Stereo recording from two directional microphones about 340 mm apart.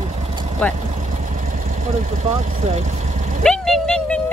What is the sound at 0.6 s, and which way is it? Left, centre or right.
Speech, centre.